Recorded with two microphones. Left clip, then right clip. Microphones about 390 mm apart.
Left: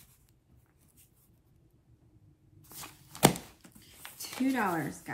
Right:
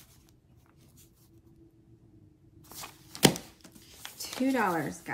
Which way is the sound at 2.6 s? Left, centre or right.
Centre.